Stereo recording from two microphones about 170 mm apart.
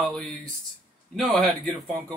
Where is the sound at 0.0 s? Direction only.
Centre (ahead or behind).